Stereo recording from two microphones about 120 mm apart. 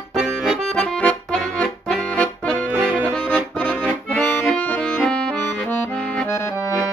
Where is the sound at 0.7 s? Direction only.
10° left (ahead or behind).